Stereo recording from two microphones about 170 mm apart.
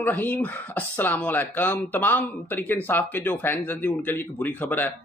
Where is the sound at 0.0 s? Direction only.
10° left (ahead or behind).